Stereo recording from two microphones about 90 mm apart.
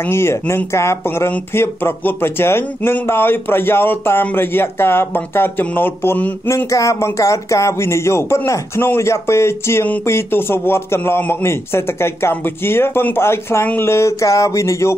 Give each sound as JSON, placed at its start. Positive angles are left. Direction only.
{"t": 0.0, "sound": "speech", "side_deg": 30}
{"t": 6.7, "sound": "speech", "side_deg": 35}